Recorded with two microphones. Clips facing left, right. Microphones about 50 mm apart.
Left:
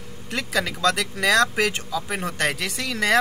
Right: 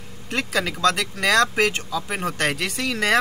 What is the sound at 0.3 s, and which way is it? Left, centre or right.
Speech, centre.